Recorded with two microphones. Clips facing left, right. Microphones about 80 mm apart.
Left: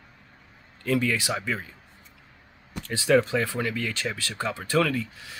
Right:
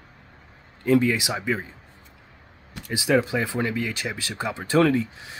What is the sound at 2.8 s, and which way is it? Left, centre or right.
Speech, centre.